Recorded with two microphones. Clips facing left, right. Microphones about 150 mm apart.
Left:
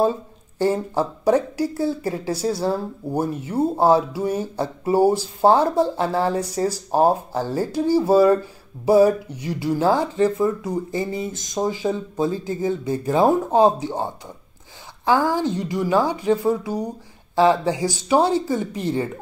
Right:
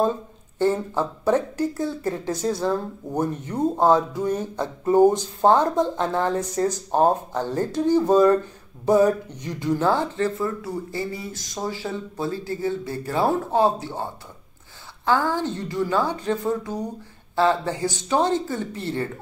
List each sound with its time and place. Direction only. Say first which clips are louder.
0.6 s speech: left 1 dB; 10° left (ahead or behind)